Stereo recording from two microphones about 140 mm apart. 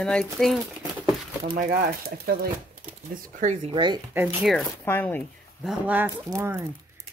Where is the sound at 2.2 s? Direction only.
90° right.